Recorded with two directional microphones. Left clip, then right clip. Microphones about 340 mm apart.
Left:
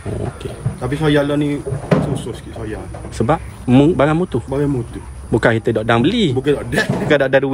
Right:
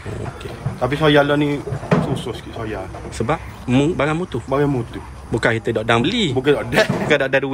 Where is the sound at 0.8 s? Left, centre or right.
Centre.